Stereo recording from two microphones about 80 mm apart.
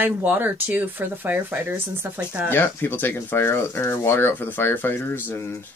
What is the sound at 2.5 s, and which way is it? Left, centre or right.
Speech, left.